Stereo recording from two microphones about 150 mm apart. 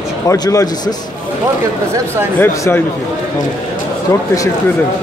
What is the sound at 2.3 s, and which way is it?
Speech, 20° left (ahead or behind).